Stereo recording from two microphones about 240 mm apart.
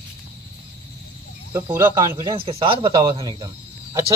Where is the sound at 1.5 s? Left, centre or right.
Centre.